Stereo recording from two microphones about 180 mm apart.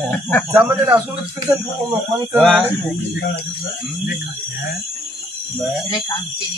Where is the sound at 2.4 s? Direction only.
Centre (ahead or behind).